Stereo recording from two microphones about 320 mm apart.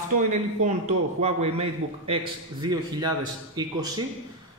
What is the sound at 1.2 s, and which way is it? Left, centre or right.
Speech, centre.